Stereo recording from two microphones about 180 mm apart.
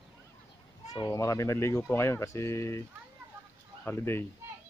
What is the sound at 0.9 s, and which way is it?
Speech, 20° left (ahead or behind).